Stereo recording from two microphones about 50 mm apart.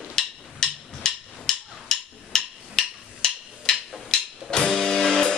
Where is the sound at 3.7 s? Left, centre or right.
Centre.